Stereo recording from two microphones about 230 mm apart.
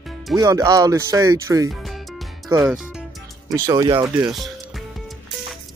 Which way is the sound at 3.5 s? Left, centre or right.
Centre.